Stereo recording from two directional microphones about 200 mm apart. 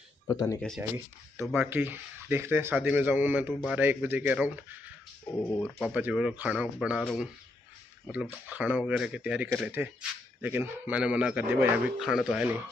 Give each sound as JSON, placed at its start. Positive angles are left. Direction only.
{"t": 0.3, "sound": "speech", "side_deg": 15}
{"t": 0.6, "sound": "speech", "side_deg": 5}
{"t": 5.8, "sound": "speech", "side_deg": -5}